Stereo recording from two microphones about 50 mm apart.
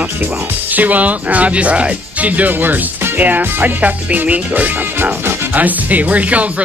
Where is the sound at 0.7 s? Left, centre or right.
Right.